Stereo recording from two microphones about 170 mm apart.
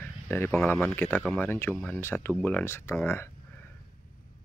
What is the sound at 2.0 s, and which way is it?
Speech, 15° left (ahead or behind).